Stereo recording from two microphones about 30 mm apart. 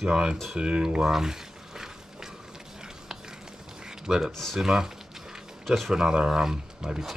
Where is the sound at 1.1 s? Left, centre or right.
Centre.